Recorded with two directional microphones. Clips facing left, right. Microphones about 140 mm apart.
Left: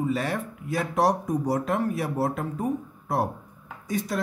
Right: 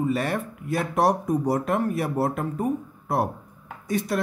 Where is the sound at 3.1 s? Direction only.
60° right (ahead or behind).